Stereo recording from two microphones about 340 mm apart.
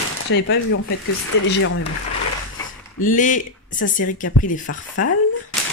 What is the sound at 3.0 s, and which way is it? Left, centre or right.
Speech, left.